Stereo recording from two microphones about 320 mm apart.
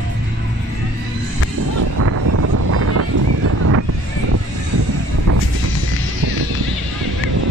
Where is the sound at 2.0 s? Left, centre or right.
Right.